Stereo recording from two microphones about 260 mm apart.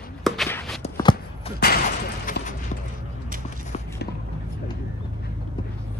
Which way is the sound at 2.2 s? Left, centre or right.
Left.